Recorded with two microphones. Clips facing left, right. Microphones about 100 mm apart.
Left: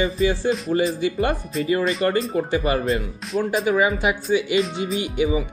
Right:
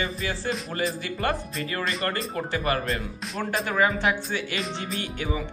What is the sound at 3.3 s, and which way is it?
Speech, 5° left (ahead or behind).